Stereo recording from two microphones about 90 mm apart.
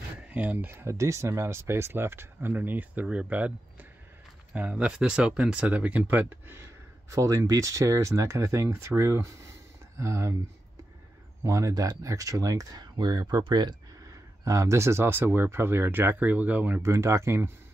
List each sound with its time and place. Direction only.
0.3 s speech: 15° right (ahead or behind)
4.6 s speech: 15° right (ahead or behind); by 10.3 s 35° right (ahead or behind)
11.4 s speech: 35° right (ahead or behind); by 13.7 s 55° right (ahead or behind)
14.4 s speech: 35° right (ahead or behind); by 16.8 s 20° right (ahead or behind)
16.8 s speech: 30° right (ahead or behind)